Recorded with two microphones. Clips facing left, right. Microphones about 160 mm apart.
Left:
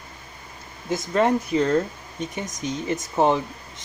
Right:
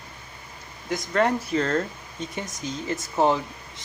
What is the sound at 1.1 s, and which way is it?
Speech, 20° left (ahead or behind).